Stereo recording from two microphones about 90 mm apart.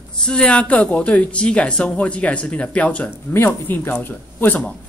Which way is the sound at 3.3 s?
25° left (ahead or behind).